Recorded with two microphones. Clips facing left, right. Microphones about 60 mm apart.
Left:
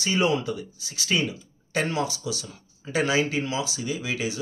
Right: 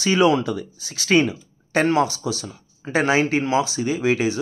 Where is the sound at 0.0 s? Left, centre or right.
Right.